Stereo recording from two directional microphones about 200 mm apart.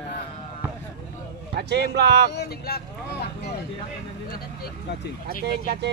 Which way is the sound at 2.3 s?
55° left (ahead or behind).